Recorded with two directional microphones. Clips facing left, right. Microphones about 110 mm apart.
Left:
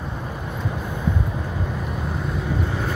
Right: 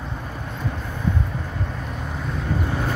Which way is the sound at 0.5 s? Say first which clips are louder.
Left 1 dB; 10° left (ahead or behind).